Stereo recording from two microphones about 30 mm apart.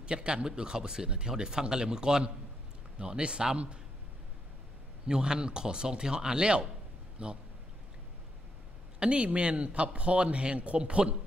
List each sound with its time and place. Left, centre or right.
0.0 s a man's voice: right
5.0 s a man's voice: right
9.0 s a man's voice: right